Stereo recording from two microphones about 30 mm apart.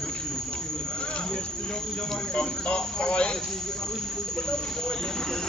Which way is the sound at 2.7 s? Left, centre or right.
Left.